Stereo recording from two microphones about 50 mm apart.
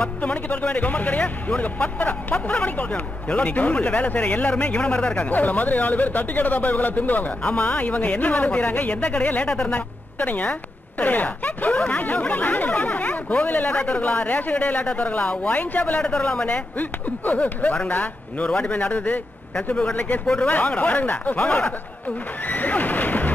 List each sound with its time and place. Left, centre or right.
0.2 s speech: left
16.0 s speech: centre
22.5 s neigh: left